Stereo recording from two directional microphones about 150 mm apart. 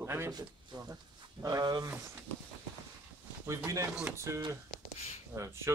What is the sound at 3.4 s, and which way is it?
Speech, 20° right (ahead or behind).